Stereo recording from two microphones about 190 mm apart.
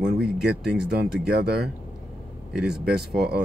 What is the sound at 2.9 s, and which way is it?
Speech, 55° right (ahead or behind).